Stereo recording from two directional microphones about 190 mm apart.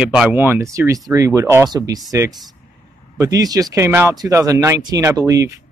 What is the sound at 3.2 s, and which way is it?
Speech, 20° right (ahead or behind).